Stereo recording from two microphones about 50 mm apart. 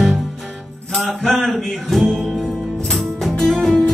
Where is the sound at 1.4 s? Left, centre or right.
Centre.